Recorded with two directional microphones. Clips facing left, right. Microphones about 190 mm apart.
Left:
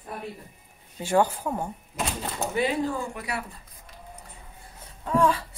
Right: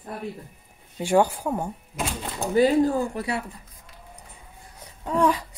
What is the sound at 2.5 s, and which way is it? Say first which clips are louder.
Speech: right 8 dB; 40° right (ahead or behind).